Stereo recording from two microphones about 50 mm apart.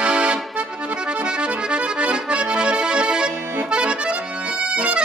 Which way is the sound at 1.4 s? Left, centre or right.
Right.